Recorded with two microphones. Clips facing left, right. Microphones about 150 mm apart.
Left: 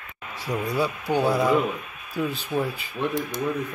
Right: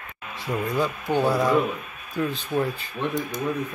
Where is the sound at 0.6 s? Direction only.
10° left (ahead or behind).